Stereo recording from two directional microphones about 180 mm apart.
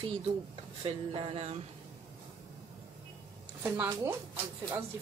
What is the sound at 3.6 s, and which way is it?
Speech, 10° right (ahead or behind).